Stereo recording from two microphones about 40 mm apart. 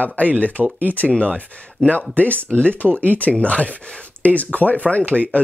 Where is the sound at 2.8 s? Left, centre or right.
Right.